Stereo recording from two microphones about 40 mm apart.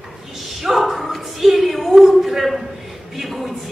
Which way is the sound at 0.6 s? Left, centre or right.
Centre.